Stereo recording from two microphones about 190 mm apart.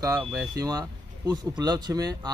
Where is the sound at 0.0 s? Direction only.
20° right (ahead or behind).